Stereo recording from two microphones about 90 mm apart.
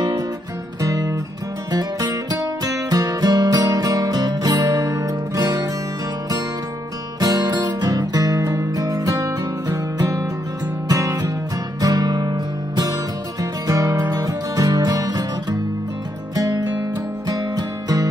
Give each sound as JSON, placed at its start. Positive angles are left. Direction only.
{"t": 0.7, "sound": "music", "side_deg": -40}
{"t": 7.2, "sound": "music", "side_deg": -45}
{"t": 16.3, "sound": "music", "side_deg": -40}